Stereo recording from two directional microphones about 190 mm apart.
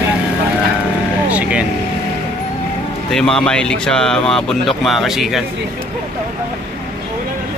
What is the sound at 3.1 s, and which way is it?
Speech, 5° left (ahead or behind).